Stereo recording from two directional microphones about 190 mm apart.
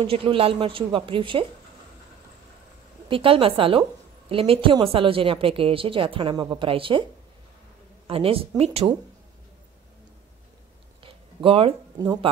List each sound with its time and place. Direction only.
0.0 s a woman's voice: 30° right (ahead or behind)
3.1 s a woman's voice: 30° right (ahead or behind)
8.1 s a woman's voice: 30° right (ahead or behind)
11.0 s a sound: 30° right (ahead or behind)